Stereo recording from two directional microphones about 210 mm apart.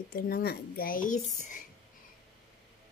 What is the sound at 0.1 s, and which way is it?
Speech, 45° left (ahead or behind).